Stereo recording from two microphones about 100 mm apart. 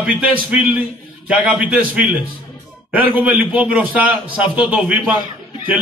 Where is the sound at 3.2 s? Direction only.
15° right (ahead or behind).